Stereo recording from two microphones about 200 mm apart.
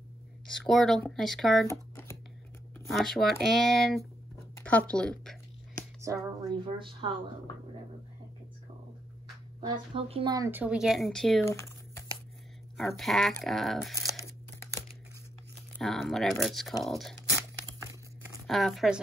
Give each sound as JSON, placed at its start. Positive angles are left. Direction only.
{"t": 0.5, "sound": "speech", "side_deg": 0}
{"t": 1.7, "sound": "shuffling cards", "side_deg": 15}
{"t": 2.8, "sound": "speech", "side_deg": 0}
{"t": 4.6, "sound": "a sound", "side_deg": 5}
{"t": 4.9, "sound": "speech", "side_deg": 5}
{"t": 6.0, "sound": "speech", "side_deg": -25}
{"t": 9.6, "sound": "speech", "side_deg": -30}
{"t": 11.4, "sound": "typing", "side_deg": 15}
{"t": 12.7, "sound": "speech", "side_deg": 0}
{"t": 15.8, "sound": "speech", "side_deg": 0}
{"t": 18.5, "sound": "speech", "side_deg": 0}